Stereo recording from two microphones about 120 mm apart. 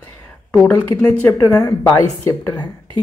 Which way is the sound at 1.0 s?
15° left (ahead or behind).